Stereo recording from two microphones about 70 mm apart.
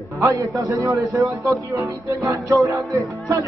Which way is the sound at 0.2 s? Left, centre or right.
Right.